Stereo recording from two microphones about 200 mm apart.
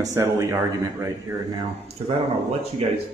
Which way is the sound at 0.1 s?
15° right (ahead or behind).